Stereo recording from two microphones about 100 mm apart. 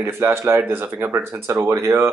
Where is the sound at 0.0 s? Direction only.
25° right (ahead or behind).